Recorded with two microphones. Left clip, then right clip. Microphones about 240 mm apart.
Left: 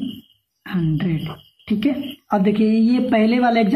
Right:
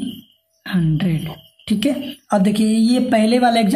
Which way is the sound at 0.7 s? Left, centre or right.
Right.